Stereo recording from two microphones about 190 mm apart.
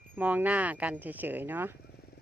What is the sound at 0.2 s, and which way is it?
Speech, 10° right (ahead or behind).